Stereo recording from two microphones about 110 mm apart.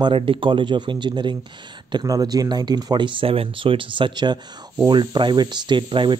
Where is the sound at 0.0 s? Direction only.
50° right (ahead or behind).